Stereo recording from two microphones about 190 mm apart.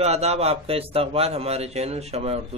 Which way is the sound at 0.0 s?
35° right (ahead or behind).